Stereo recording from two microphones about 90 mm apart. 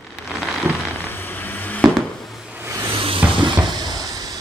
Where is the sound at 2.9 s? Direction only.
90° right.